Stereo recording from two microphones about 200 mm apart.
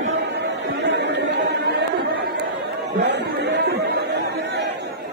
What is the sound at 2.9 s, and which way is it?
Speech, 60° right (ahead or behind).